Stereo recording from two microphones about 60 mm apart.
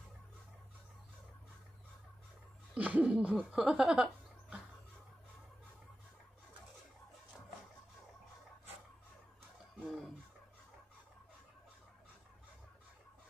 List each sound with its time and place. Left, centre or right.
2.7 s speech: right
3.5 s speech: centre
9.8 s fowl: centre